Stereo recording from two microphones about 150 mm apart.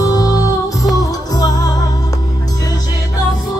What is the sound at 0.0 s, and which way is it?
Music, 25° left (ahead or behind).